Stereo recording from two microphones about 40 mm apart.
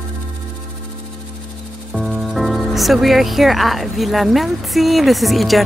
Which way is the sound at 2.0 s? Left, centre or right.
Centre.